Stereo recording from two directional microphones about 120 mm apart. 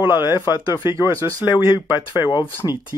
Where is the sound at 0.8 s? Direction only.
20° right (ahead or behind).